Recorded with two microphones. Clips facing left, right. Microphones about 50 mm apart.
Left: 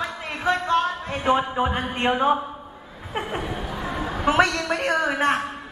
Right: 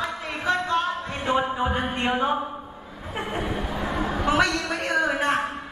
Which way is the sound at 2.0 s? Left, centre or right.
Centre.